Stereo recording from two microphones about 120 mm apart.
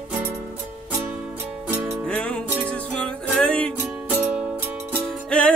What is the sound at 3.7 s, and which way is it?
Music, 15° right (ahead or behind).